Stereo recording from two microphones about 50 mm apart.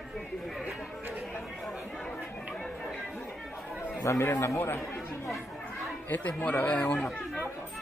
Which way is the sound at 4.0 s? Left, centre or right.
Left.